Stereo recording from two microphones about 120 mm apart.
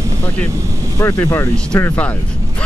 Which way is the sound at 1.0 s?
25° left (ahead or behind).